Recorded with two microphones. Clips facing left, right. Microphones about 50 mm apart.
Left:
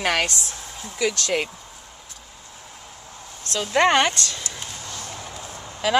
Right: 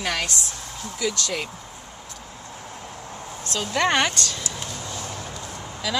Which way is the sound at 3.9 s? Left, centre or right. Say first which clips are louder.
Left 2 dB; centre.